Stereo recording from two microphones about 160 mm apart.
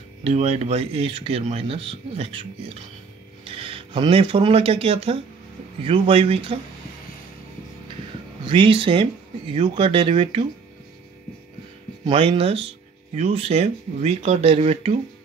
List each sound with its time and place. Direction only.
0.2 s speech: 40° right (ahead or behind)
8.5 s speech: 35° right (ahead or behind)
12.1 s speech: 35° right (ahead or behind)